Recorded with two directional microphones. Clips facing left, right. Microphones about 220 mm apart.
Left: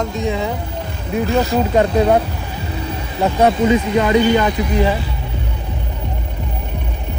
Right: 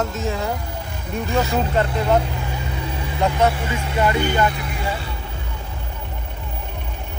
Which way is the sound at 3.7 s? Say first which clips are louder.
Left 8 dB; 90° left.